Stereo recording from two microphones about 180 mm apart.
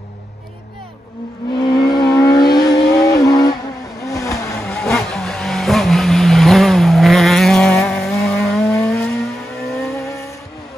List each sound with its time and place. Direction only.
1.6 s vehicle: 25° left (ahead or behind)
4.6 s vehicle: 5° left (ahead or behind)